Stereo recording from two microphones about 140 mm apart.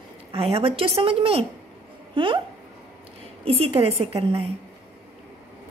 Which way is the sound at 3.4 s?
45° right (ahead or behind).